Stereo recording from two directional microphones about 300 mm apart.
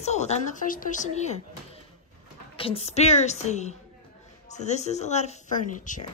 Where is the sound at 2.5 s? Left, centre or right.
Centre.